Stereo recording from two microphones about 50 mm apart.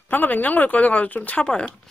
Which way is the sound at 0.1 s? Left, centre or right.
Left.